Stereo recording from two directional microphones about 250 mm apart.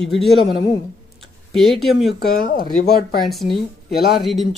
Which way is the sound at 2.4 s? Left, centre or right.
Left.